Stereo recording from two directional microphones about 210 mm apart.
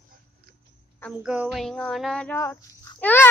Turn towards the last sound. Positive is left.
turn(degrees=10)  # may be behind; listen again after turning